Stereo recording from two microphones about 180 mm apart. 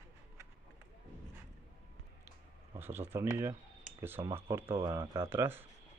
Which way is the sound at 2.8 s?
10° right (ahead or behind).